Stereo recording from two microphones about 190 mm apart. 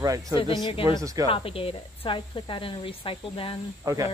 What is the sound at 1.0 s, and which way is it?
Speech, 20° right (ahead or behind).